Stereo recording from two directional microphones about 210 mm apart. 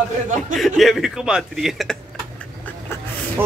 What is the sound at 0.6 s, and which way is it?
Speech, centre (ahead or behind).